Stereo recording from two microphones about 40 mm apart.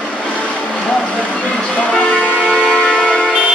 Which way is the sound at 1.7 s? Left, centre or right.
Left.